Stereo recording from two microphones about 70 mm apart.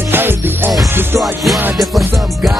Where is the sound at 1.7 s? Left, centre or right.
Centre.